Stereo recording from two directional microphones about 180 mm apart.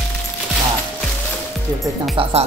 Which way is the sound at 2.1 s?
30° right (ahead or behind).